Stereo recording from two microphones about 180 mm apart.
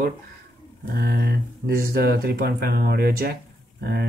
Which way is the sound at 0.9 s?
60° right (ahead or behind).